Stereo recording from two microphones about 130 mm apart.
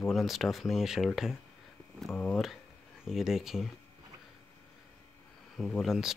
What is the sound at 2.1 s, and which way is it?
Speech, 15° left (ahead or behind).